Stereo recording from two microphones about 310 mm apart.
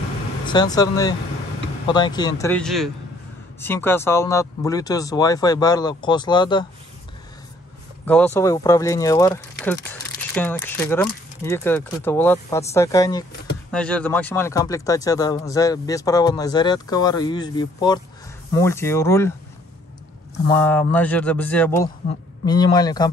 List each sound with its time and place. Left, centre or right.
0.5 s speech: centre
8.0 s speech: centre
20.5 s speech: centre